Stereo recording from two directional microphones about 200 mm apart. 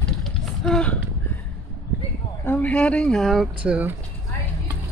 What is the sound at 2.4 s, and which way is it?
Speech, 5° left (ahead or behind).